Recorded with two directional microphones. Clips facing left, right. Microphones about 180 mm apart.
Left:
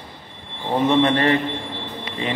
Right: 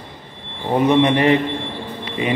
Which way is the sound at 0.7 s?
15° right (ahead or behind).